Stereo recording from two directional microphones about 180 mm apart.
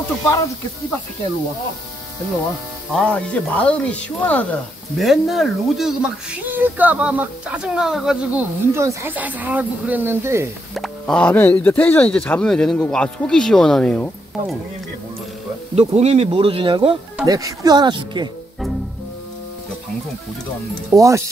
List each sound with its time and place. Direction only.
2.9 s speech: 5° left (ahead or behind); by 10.5 s 15° right (ahead or behind)
10.7 s speech: centre (ahead or behind)
15.7 s speech: 35° right (ahead or behind)
20.9 s speech: 15° right (ahead or behind)